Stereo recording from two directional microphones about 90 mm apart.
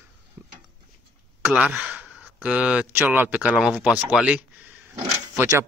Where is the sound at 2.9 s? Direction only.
20° right (ahead or behind).